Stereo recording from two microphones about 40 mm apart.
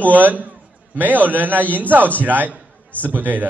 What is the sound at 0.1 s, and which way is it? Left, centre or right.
A man's voice, right.